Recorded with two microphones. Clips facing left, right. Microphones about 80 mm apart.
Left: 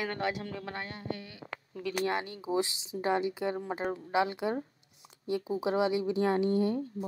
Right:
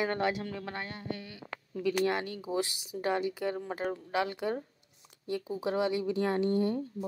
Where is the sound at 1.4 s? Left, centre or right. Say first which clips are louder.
Left 2 dB; left.